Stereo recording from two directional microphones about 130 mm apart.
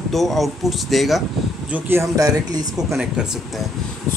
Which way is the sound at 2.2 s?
30° right (ahead or behind).